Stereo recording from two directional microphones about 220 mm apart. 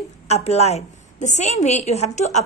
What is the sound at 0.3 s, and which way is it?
A woman's voice, 30° left (ahead or behind).